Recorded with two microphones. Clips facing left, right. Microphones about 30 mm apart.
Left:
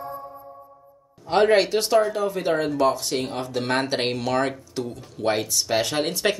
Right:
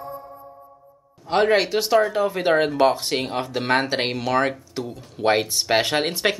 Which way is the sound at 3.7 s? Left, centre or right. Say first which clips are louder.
Right 3 dB; centre.